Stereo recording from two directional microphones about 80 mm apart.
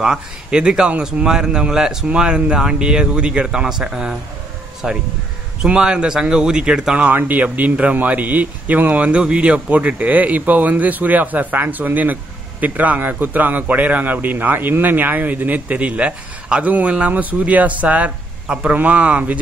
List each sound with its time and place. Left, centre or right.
0.0 s speech: centre
7.1 s speech: right